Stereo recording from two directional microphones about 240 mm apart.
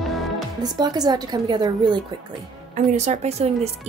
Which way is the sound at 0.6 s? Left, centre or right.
Centre.